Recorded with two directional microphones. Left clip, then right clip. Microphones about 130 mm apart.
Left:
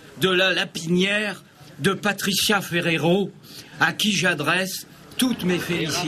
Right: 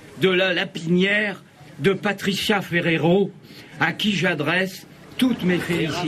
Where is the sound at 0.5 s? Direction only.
25° left (ahead or behind).